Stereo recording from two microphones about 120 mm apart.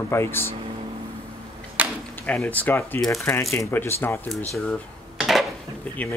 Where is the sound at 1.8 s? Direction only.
15° right (ahead or behind).